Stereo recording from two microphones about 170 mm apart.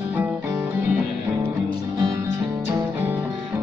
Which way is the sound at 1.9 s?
25° right (ahead or behind).